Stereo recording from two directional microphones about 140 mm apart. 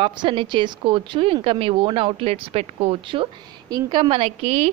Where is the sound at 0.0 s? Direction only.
40° right (ahead or behind).